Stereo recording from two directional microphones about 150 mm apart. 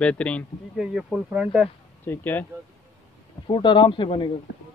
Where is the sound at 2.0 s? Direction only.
10° left (ahead or behind).